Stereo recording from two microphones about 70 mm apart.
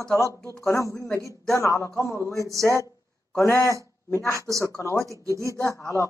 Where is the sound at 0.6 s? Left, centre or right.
Left.